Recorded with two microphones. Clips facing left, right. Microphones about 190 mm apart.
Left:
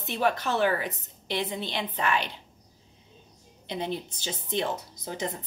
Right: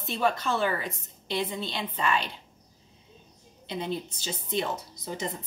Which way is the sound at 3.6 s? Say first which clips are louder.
Even; 20° left (ahead or behind).